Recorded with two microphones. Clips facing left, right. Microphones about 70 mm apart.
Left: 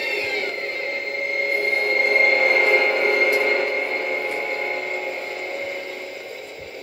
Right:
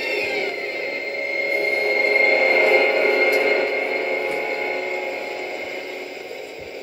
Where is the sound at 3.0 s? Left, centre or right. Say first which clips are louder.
Right 1 dB; right.